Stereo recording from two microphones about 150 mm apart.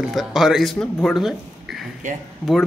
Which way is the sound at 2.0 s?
55° right (ahead or behind).